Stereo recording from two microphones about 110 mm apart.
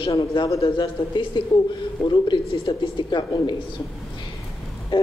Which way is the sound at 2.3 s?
40° left (ahead or behind).